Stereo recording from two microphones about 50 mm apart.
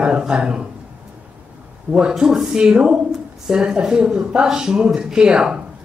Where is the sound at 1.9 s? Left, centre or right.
Right.